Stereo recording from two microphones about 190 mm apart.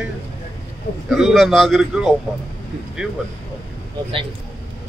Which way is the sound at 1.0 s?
Centre (ahead or behind).